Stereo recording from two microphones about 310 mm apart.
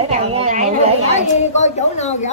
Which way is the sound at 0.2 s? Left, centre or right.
Centre.